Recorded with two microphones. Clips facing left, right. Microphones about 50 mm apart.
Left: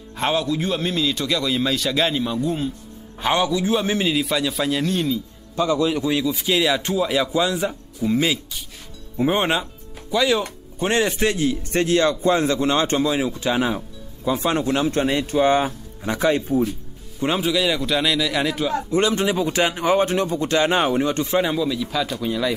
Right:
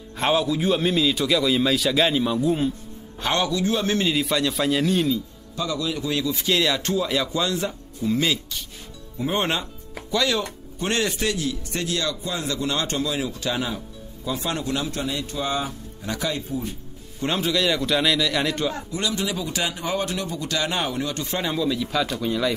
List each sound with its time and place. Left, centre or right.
0.1 s a man's voice: centre
3.2 s speech: centre
4.1 s a man's voice: centre
5.6 s a man's voice: left
6.0 s a man's voice: centre; by 16.6 s left
17.2 s a man's voice: centre
18.9 s a man's voice: left
21.4 s a man's voice: centre